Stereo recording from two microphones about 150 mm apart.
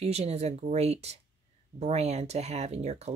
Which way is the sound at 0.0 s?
45° right (ahead or behind).